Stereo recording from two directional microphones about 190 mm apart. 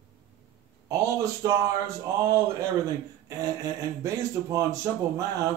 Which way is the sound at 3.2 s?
15° right (ahead or behind).